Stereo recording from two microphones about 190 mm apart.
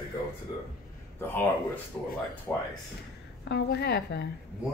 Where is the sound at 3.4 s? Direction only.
60° left (ahead or behind).